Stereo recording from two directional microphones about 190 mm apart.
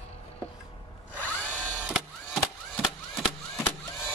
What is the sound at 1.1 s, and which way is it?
Drill, 10° left (ahead or behind).